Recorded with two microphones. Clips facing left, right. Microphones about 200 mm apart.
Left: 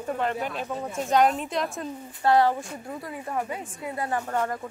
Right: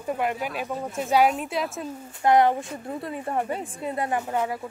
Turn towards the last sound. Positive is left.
turn(degrees=-10)  # may be behind; listen again after turning